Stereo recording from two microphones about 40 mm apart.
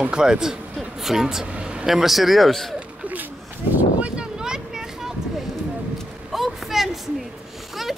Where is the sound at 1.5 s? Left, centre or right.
Right.